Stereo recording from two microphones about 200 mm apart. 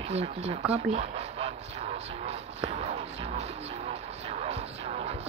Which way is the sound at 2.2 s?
30° right (ahead or behind).